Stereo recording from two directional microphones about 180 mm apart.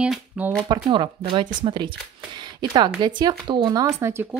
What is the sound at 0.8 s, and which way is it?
Speech, 25° right (ahead or behind).